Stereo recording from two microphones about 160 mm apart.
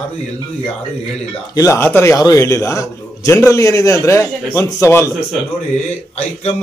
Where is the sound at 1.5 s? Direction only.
20° left (ahead or behind).